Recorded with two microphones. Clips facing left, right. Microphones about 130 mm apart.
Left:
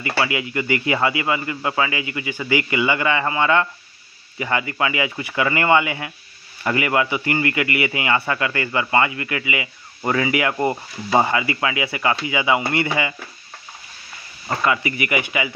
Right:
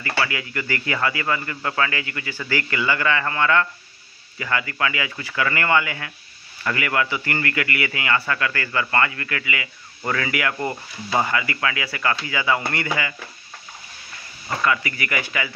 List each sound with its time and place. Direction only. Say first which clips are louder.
0.2 s a man's voice: left 4 dB; 20° left (ahead or behind)
14.6 s a man's voice: left 2 dB; 25° left (ahead or behind)